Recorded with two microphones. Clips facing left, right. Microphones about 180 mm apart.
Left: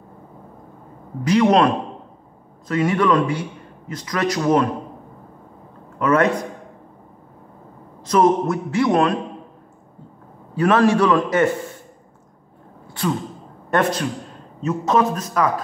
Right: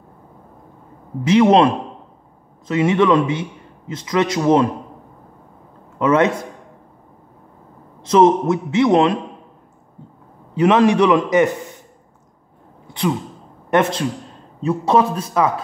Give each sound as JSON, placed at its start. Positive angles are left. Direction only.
{"t": 1.2, "sound": "a man's voice", "side_deg": -25}
{"t": 2.7, "sound": "a man's voice", "side_deg": -20}
{"t": 5.9, "sound": "a man's voice", "side_deg": -25}
{"t": 8.0, "sound": "a man's voice", "side_deg": -25}
{"t": 10.5, "sound": "a man's voice", "side_deg": -20}
{"t": 12.8, "sound": "gasp", "side_deg": -20}
{"t": 13.7, "sound": "a man's voice", "side_deg": -25}